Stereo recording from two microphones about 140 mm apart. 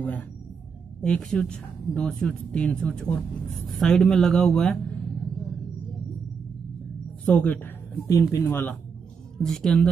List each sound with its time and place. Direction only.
0.0 s speech: 10° left (ahead or behind)
7.2 s speech: 10° left (ahead or behind)
8.2 s speech: 25° left (ahead or behind)
9.4 s speech: 5° left (ahead or behind)